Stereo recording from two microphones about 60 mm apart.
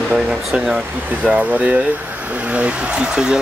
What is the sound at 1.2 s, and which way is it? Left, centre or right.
Speech, right.